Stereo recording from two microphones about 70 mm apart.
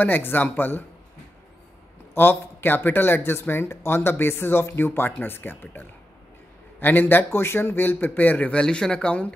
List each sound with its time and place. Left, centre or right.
0.0 s a man's voice: left
2.1 s a man's voice: left